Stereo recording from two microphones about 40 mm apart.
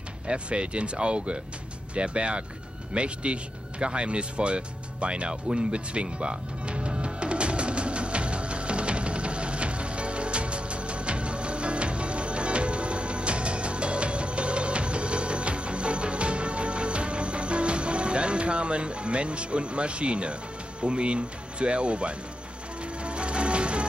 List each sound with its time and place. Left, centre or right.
0.3 s speech: right
7.1 s music: right
20.8 s speech: right
23.0 s music: right